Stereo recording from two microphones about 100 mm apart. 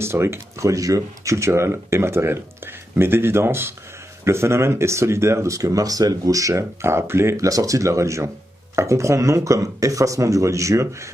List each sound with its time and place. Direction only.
0.0 s speech: 25° right (ahead or behind)